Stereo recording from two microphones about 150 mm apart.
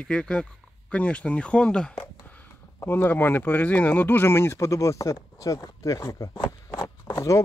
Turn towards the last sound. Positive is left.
turn(degrees=20)  # may be behind; listen again after turning